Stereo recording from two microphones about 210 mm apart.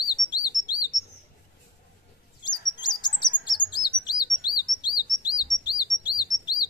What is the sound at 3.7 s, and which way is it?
Chirp, 20° left (ahead or behind).